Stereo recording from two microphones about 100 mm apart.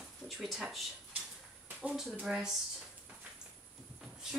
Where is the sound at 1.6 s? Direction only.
10° right (ahead or behind).